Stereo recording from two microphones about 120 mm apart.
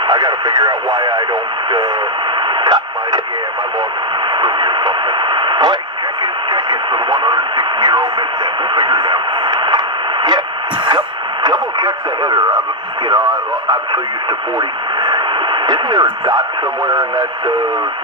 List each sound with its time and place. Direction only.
0.1 s speech: 35° right (ahead or behind)
2.6 s radio: 35° right (ahead or behind)
4.4 s speech: 40° right (ahead or behind)
6.5 s radio: 40° right (ahead or behind)
11.4 s radio: 35° right (ahead or behind)
15.6 s speech: 35° right (ahead or behind)